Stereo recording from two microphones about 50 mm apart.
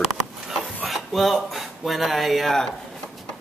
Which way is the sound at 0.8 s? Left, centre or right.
Centre.